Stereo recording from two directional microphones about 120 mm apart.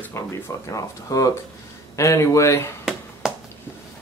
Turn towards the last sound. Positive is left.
turn(degrees=-5)  # may be behind; listen again after turning